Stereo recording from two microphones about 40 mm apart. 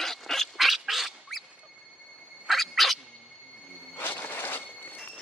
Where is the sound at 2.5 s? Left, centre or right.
Centre.